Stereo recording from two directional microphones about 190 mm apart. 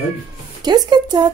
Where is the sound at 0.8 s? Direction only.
20° right (ahead or behind).